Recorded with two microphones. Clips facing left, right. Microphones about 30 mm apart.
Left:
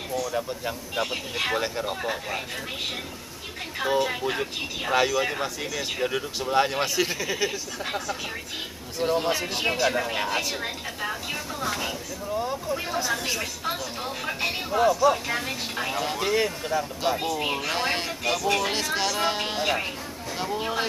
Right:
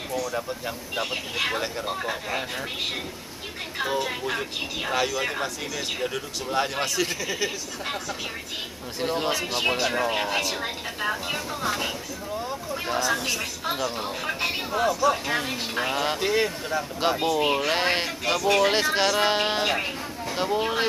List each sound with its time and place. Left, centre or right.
0.1 s speech: centre
3.8 s speech: centre
12.4 s speech: centre
16.2 s speech: centre
17.7 s speech: centre
18.6 s speech: right